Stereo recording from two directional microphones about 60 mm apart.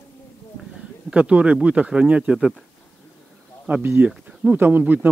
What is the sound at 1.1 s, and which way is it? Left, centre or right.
Speech, right.